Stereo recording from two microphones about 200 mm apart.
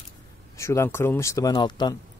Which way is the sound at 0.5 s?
15° left (ahead or behind).